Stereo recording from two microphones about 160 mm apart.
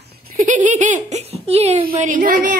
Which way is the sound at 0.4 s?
50° right (ahead or behind).